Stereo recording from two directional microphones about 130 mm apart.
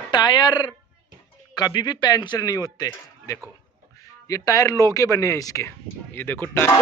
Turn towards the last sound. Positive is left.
turn(degrees=15)  # may be behind; listen again after turning